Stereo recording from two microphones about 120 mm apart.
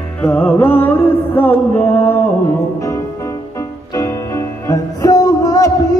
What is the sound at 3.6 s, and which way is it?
Music, 25° left (ahead or behind).